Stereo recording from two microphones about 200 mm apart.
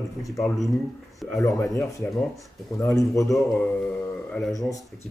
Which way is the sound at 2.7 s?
15° left (ahead or behind).